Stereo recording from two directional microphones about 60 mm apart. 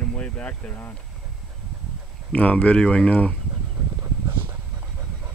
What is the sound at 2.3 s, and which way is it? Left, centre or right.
Speech, left.